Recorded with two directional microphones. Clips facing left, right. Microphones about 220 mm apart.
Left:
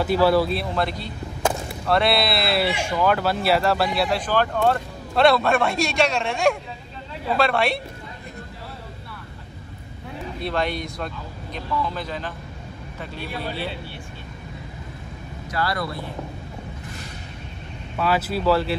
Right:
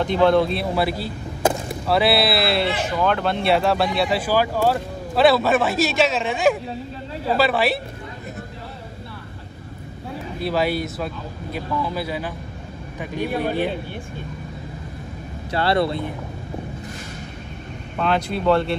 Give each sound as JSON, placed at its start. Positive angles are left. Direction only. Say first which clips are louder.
{"t": 0.0, "sound": "speech", "louder": "right 2 dB", "side_deg": 5}
{"t": 10.4, "sound": "speech", "louder": "right 4 dB", "side_deg": -5}
{"t": 15.5, "sound": "speech", "louder": "right 6 dB", "side_deg": -25}
{"t": 17.9, "sound": "speech", "louder": "right 1 dB", "side_deg": 5}